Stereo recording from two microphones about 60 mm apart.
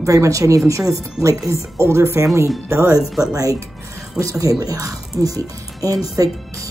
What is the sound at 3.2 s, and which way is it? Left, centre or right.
Speech, right.